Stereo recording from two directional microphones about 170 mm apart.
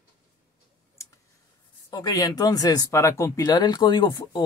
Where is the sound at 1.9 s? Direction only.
20° left (ahead or behind).